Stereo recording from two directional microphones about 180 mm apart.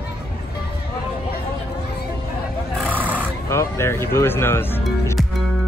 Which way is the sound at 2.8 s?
10° right (ahead or behind).